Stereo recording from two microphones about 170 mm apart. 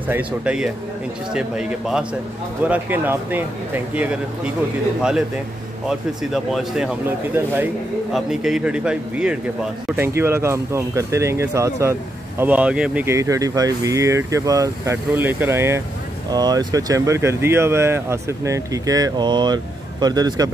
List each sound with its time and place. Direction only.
0.1 s speech: 5° right (ahead or behind)
5.9 s speech: centre (ahead or behind); by 20.4 s 25° right (ahead or behind)